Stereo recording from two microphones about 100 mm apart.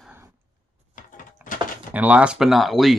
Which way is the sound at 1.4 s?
20° right (ahead or behind).